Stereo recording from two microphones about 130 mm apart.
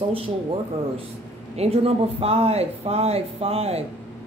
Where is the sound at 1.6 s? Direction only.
55° right (ahead or behind).